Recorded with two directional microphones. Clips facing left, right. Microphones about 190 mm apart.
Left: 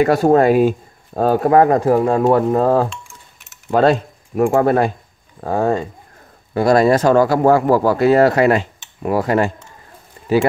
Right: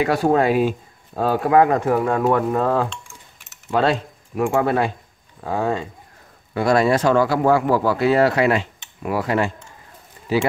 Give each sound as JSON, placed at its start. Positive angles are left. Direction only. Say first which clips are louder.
{"t": 0.0, "sound": "speech", "louder": "left 5 dB", "side_deg": 45}